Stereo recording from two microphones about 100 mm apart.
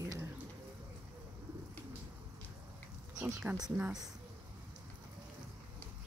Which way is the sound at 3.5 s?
15° right (ahead or behind).